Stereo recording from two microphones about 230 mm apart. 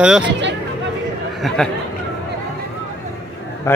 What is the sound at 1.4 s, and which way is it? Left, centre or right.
Speech, centre.